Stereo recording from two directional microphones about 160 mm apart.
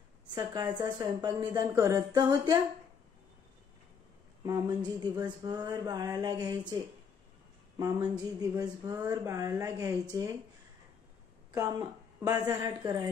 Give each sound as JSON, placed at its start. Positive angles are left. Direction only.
{"t": 0.3, "sound": "speech", "side_deg": -25}
{"t": 4.5, "sound": "speech", "side_deg": -25}
{"t": 7.7, "sound": "speech", "side_deg": -20}
{"t": 11.5, "sound": "a woman's voice", "side_deg": -20}